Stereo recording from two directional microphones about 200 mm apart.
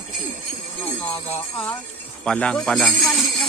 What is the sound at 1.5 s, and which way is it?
Speech, 5° left (ahead or behind).